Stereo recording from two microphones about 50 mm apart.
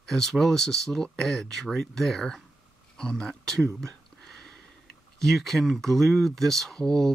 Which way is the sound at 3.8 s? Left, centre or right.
Centre.